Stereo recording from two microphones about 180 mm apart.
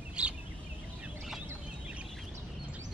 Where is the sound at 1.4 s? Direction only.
5° right (ahead or behind).